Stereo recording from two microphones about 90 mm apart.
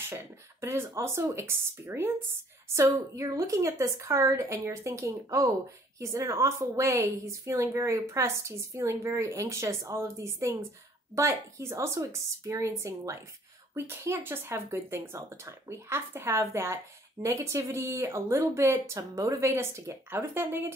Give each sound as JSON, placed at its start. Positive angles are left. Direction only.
{"t": 0.1, "sound": "speech", "side_deg": -25}
{"t": 2.7, "sound": "speech", "side_deg": -35}